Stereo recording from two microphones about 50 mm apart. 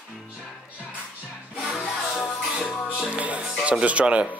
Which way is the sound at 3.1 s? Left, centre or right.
Right.